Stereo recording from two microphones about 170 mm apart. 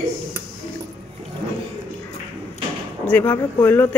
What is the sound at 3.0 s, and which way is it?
Speech, 10° left (ahead or behind).